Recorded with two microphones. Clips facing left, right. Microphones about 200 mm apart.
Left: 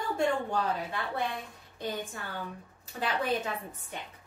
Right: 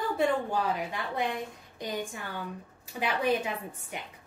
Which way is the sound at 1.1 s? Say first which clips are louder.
Right 2 dB; 15° right (ahead or behind).